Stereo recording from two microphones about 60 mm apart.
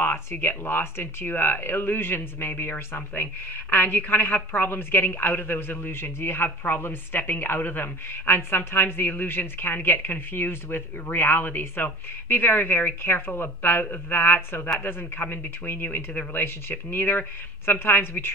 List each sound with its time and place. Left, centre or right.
0.0 s a woman's voice: left